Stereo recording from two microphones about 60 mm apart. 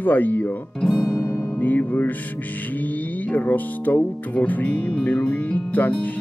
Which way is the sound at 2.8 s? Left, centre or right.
Left.